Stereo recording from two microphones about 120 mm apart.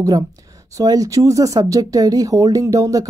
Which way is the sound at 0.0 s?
30° right (ahead or behind).